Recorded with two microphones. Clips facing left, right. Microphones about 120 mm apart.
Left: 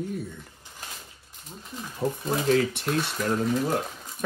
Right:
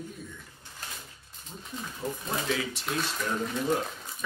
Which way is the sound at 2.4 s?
50° left (ahead or behind).